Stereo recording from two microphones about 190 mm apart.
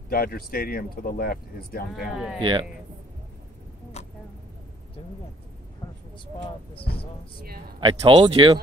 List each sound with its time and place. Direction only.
0.1 s speech: 50° left (ahead or behind)
2.1 s speech: centre (ahead or behind)
7.8 s speech: 25° right (ahead or behind)